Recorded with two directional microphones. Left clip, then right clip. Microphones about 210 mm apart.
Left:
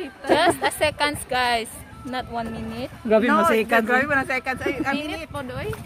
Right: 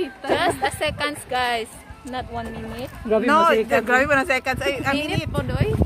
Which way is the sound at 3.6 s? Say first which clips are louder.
Even; 40° left (ahead or behind).